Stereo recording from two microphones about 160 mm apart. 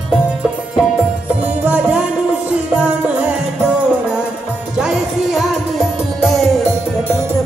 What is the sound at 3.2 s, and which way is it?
Music, 5° right (ahead or behind).